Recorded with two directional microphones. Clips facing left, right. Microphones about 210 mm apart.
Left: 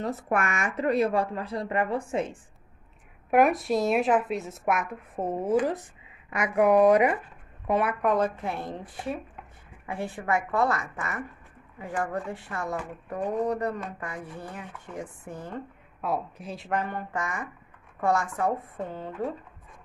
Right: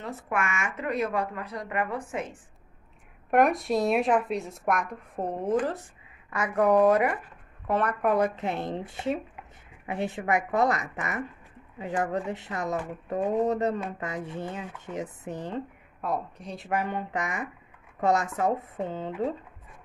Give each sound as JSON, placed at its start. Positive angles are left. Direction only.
{"t": 0.0, "sound": "speech", "side_deg": 40}
{"t": 3.3, "sound": "a woman's voice", "side_deg": 5}
{"t": 8.0, "sound": "speech", "side_deg": -10}
{"t": 8.4, "sound": "speech", "side_deg": -20}
{"t": 16.0, "sound": "a woman's voice", "side_deg": 5}
{"t": 16.8, "sound": "speech", "side_deg": -15}